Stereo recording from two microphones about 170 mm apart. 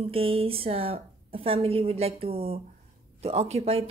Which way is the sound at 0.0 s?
35° right (ahead or behind).